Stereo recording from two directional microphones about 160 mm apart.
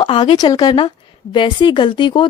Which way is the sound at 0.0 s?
30° left (ahead or behind).